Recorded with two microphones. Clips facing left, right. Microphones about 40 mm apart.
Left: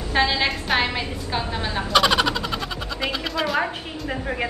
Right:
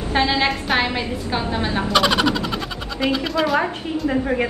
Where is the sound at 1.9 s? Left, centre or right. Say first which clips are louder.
Even; centre.